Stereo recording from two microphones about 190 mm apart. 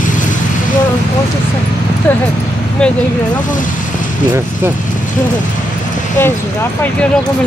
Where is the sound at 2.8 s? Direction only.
5° left (ahead or behind).